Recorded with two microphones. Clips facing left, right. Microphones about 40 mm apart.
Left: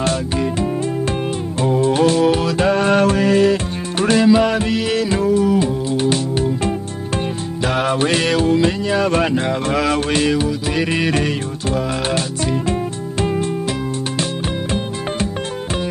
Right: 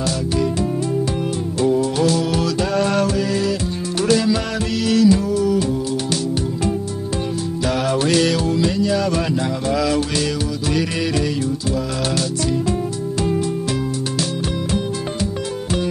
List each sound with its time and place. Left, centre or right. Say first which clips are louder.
0.0 s music: left 1 dB; left